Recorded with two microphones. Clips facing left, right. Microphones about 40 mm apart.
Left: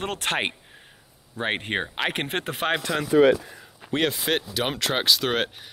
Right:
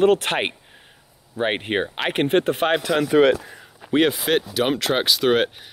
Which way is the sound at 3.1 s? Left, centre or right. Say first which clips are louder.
Right 1 dB; right.